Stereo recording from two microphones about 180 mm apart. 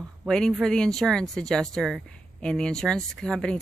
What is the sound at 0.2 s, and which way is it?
Speech, centre (ahead or behind).